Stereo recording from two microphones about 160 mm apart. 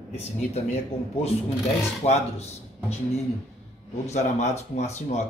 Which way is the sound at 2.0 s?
40° left (ahead or behind).